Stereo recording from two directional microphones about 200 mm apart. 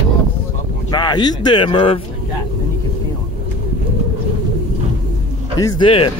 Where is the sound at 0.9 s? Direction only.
20° left (ahead or behind).